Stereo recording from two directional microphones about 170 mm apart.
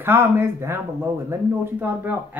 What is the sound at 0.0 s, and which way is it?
Speech, 15° right (ahead or behind).